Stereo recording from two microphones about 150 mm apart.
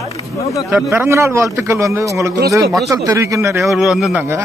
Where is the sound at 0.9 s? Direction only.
15° right (ahead or behind).